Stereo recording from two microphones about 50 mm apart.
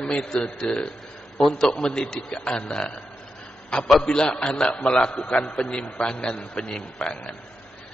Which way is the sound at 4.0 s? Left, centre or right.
Centre.